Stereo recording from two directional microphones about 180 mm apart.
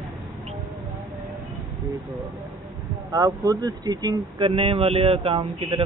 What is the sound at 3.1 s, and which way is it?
A man's voice, 20° right (ahead or behind).